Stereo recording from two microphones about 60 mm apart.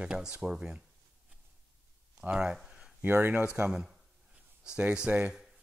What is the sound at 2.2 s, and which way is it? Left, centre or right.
Speech, centre.